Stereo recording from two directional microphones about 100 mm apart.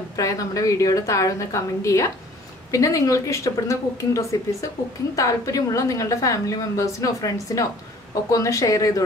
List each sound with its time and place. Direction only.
0.2 s a woman's voice: 35° left (ahead or behind)